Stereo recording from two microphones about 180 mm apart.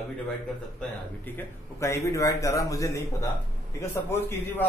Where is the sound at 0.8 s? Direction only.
10° left (ahead or behind).